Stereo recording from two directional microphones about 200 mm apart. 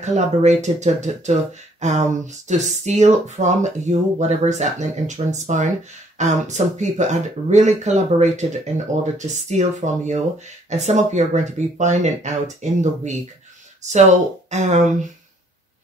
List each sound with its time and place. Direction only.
0.0 s speech: 35° right (ahead or behind)
13.8 s speech: 35° right (ahead or behind)